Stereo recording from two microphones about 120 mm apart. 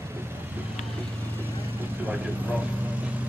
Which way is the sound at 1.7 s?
15° right (ahead or behind).